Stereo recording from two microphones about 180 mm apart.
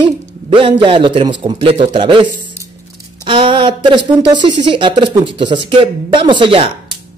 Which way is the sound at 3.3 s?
30° right (ahead or behind).